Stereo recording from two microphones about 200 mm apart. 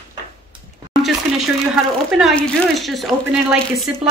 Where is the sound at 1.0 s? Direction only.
Centre (ahead or behind).